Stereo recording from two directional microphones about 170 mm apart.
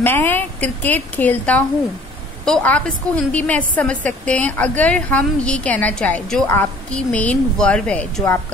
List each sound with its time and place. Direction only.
0.0 s a woman's voice: 10° left (ahead or behind)